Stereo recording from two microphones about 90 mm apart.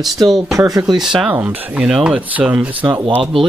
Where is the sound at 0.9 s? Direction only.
10° right (ahead or behind).